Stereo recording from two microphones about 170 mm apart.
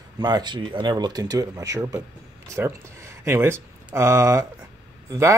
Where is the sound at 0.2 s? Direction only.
25° right (ahead or behind).